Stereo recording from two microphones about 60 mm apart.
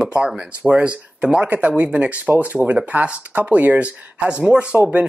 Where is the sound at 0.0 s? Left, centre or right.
Centre.